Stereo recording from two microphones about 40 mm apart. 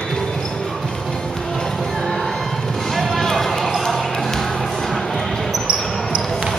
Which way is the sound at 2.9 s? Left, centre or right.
Centre.